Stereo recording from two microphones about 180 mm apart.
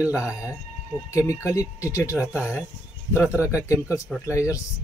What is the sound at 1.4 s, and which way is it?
Speech, 15° left (ahead or behind).